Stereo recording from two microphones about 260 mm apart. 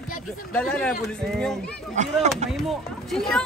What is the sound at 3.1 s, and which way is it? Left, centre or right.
Speech, centre.